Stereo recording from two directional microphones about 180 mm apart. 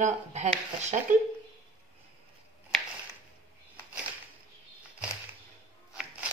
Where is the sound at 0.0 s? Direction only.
40° right (ahead or behind).